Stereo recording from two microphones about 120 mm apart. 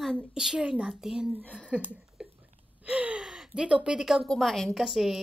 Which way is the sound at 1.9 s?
10° right (ahead or behind).